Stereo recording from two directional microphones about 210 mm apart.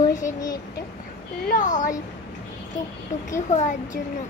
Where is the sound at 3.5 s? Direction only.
35° left (ahead or behind).